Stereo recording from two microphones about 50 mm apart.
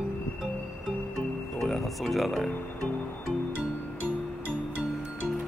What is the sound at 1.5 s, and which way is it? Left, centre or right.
Speech, centre.